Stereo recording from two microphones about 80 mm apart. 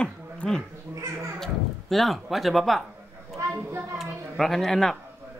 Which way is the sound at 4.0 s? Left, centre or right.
Centre.